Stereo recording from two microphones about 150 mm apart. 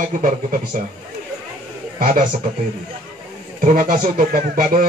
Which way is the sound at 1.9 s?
65° right (ahead or behind).